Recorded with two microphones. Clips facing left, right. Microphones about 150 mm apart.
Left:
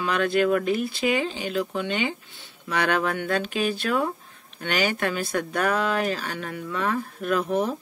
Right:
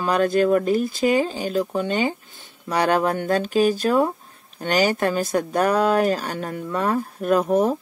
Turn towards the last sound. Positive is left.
turn(degrees=-45)  # may be behind; listen again after turning